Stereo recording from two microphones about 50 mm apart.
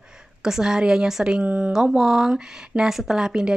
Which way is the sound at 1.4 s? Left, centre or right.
Right.